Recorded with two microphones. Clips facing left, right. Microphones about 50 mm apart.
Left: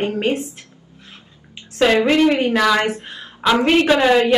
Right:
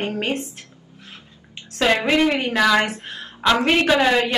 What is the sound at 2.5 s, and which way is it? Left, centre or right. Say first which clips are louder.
Speech: left 1 dB; centre.